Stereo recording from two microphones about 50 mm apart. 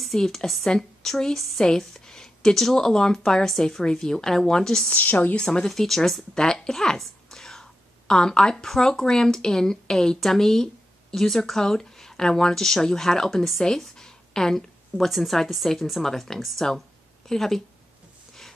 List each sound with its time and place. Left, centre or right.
0.0 s a woman's voice: centre
4.8 s a woman's voice: left
5.7 s speech: centre